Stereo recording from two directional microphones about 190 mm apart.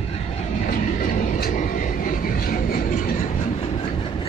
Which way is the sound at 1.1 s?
40° left (ahead or behind).